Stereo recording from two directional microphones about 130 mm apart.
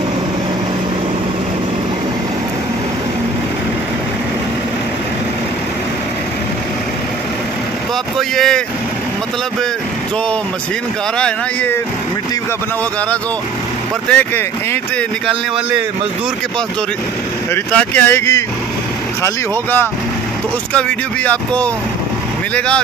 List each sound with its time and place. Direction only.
8.2 s speech: 5° left (ahead or behind)
11.1 s speech: 10° left (ahead or behind)
14.0 s speech: 10° left (ahead or behind)
17.7 s speech: 15° left (ahead or behind)